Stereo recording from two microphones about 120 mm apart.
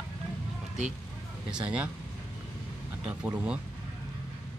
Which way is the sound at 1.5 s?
10° right (ahead or behind).